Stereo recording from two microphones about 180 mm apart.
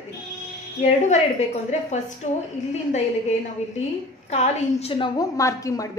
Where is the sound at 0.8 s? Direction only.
40° left (ahead or behind).